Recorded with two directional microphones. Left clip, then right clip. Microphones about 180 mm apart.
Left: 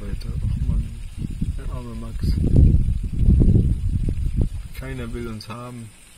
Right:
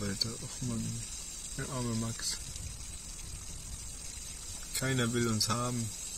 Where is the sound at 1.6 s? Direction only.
15° left (ahead or behind).